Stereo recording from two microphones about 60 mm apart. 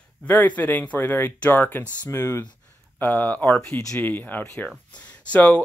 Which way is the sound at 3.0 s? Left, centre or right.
Left.